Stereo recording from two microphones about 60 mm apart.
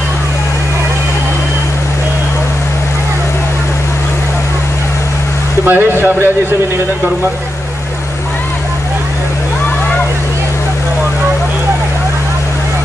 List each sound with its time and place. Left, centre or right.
5.7 s speech: right